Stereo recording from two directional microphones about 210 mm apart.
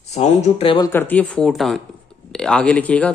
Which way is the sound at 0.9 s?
10° left (ahead or behind).